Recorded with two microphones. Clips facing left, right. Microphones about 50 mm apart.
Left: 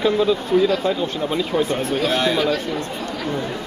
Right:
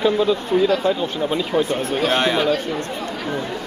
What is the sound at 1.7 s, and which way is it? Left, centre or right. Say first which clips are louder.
Speech: right 1 dB; right.